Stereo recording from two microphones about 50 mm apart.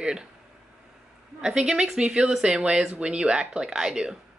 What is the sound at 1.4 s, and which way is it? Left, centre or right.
Speech, centre.